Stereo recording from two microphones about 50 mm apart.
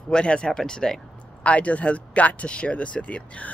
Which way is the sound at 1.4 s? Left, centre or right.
Left.